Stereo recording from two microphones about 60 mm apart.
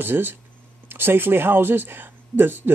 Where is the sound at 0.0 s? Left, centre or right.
Right.